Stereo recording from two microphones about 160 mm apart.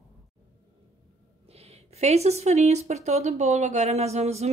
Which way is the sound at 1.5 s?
40° right (ahead or behind).